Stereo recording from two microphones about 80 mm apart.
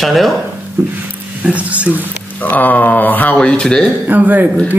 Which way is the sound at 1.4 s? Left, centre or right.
Centre.